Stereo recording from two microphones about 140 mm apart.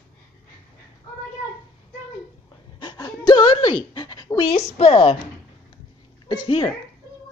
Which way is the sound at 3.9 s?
30° left (ahead or behind).